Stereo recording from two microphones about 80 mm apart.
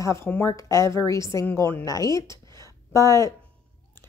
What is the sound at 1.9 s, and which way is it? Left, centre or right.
Speech, left.